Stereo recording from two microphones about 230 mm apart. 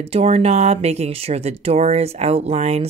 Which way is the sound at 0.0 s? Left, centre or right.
Right.